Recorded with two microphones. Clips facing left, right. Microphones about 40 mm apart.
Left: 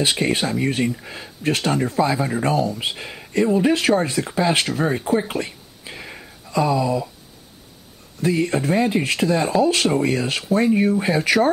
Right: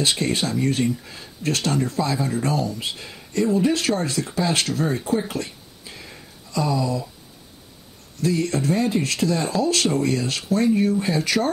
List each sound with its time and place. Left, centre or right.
0.0 s speech: centre
5.3 s a sound: left
8.2 s speech: left